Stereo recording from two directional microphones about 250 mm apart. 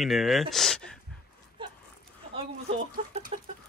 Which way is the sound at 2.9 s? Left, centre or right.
Right.